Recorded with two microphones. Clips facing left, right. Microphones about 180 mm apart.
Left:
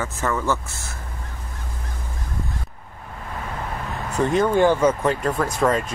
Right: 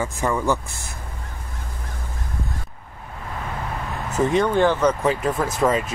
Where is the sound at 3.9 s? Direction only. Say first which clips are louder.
Right 1 dB; centre (ahead or behind).